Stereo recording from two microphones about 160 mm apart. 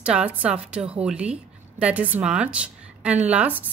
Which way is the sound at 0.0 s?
5° right (ahead or behind).